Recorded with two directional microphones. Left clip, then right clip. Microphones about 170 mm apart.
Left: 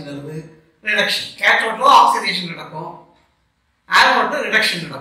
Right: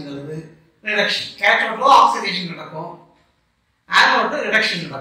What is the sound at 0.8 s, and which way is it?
A woman's voice, 25° left (ahead or behind).